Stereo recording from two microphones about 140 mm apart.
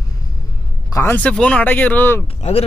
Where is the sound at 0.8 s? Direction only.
25° left (ahead or behind).